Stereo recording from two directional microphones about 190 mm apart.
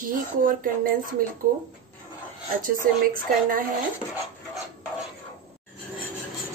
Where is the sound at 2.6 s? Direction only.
45° right (ahead or behind).